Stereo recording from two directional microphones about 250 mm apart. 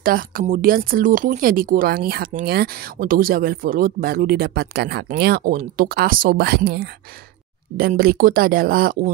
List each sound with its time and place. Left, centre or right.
0.0 s speech: right